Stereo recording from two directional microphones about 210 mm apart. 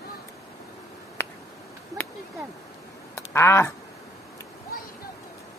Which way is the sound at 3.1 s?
10° left (ahead or behind).